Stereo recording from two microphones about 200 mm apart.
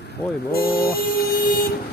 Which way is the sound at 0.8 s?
50° left (ahead or behind).